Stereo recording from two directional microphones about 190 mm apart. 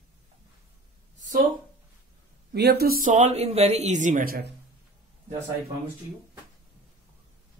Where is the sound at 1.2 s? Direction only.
40° right (ahead or behind).